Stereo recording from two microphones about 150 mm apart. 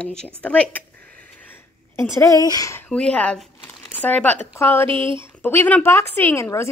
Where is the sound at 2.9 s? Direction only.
5° left (ahead or behind).